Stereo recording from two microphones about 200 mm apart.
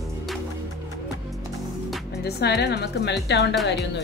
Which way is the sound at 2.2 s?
55° left (ahead or behind).